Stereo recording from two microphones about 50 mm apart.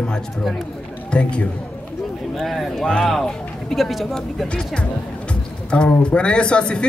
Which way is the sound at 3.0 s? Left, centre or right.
Centre.